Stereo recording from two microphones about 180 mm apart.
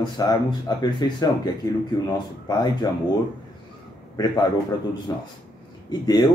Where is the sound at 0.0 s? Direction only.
25° left (ahead or behind).